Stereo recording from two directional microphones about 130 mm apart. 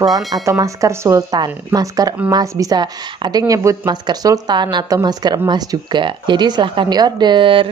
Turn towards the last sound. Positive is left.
turn(degrees=-40)  # may be behind; listen again after turning